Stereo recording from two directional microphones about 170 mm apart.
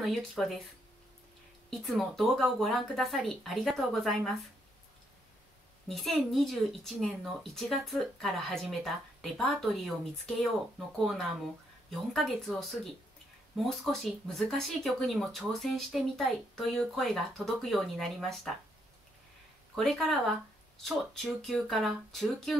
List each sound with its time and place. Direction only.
0.0 s a woman's voice: centre (ahead or behind)
1.7 s a woman's voice: centre (ahead or behind)
5.9 s a woman's voice: centre (ahead or behind)
19.7 s a woman's voice: centre (ahead or behind)